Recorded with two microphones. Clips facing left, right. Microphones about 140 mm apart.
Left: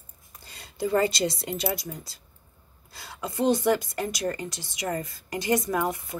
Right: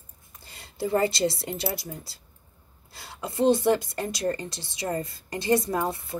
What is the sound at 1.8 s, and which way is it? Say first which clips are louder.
A woman's voice: left 1 dB; 25° right (ahead or behind).